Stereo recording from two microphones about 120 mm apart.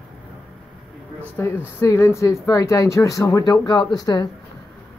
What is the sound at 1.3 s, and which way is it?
Speech, 20° left (ahead or behind).